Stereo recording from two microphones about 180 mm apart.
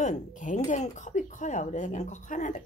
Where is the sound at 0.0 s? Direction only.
45° left (ahead or behind).